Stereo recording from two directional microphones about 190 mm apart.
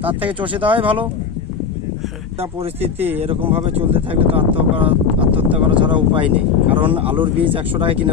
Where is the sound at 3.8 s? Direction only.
30° right (ahead or behind).